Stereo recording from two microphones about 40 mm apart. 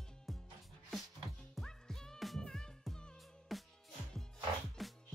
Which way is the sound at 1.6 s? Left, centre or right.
Centre.